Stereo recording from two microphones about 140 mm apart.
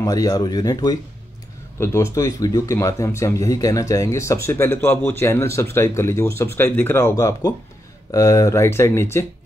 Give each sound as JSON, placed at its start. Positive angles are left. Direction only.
{"t": 0.0, "sound": "speech", "side_deg": 25}